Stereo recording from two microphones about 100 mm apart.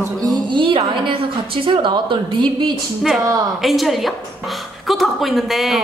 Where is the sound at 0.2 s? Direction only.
50° right (ahead or behind).